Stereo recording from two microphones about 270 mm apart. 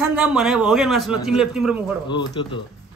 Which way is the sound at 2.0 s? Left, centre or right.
Centre.